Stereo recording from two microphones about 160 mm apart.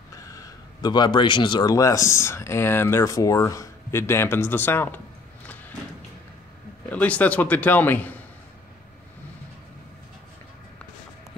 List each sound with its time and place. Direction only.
0.1 s speech: 20° left (ahead or behind)
6.9 s a man's voice: 10° left (ahead or behind)